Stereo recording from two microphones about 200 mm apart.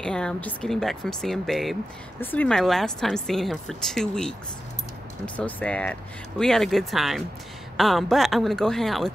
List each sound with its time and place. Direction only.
0.0 s a woman's voice: 5° left (ahead or behind)